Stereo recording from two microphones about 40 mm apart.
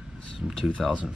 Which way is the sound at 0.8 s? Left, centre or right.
Centre.